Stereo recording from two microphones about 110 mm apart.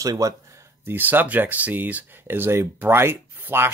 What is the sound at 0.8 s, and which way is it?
Speech, 20° right (ahead or behind).